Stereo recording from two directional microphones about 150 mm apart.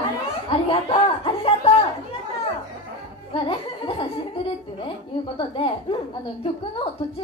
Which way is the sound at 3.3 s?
35° left (ahead or behind).